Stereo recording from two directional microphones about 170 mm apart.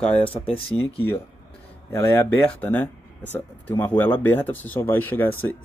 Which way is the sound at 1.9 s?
15° left (ahead or behind).